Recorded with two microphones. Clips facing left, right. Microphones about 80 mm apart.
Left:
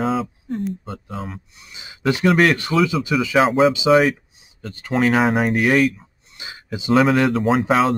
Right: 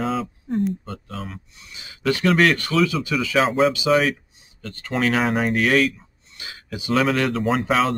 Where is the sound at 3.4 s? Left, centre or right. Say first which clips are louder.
Left 3 dB; centre.